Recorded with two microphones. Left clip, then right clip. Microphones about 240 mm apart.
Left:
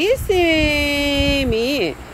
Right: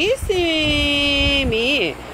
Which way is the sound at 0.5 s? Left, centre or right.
Left.